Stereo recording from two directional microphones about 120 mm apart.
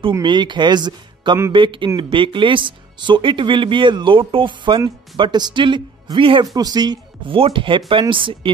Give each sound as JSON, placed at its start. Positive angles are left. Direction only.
{"t": 0.2, "sound": "speech", "side_deg": -40}
{"t": 6.4, "sound": "speech", "side_deg": -30}
{"t": 7.3, "sound": "speech", "side_deg": -45}